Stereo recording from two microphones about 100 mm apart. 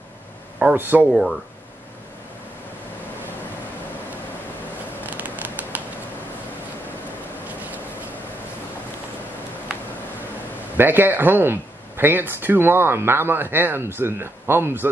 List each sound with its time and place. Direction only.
0.6 s a man's voice: 15° right (ahead or behind)
5.7 s a sound: 15° right (ahead or behind)
10.8 s speech: 20° right (ahead or behind)